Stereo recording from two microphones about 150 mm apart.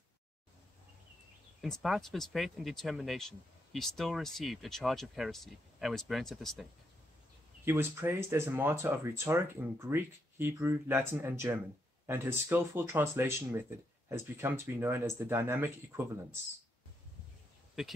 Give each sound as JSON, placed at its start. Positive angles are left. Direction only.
{"t": 1.6, "sound": "speech", "side_deg": 0}
{"t": 7.6, "sound": "speech", "side_deg": -15}